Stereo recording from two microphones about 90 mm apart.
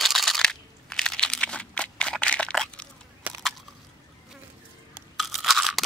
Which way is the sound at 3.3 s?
15° right (ahead or behind).